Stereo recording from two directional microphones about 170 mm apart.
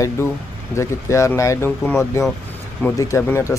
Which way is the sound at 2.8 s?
15° left (ahead or behind).